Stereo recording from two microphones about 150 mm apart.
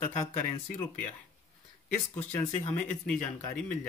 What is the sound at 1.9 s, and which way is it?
Speech, 10° left (ahead or behind).